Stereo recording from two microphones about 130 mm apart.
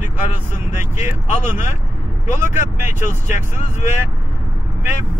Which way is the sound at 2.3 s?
65° left (ahead or behind).